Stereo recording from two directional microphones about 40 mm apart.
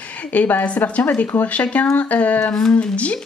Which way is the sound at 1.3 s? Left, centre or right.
Left.